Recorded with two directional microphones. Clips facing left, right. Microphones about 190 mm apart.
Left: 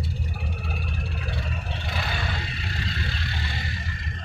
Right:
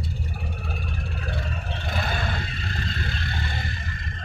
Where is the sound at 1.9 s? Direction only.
50° right (ahead or behind).